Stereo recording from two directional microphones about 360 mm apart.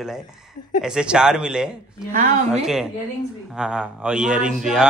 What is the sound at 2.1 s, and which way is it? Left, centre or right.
Speech, right.